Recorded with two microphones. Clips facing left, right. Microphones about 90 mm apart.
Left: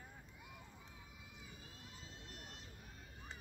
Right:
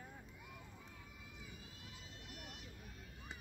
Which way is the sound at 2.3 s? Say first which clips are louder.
Right 2 dB; 30° left (ahead or behind).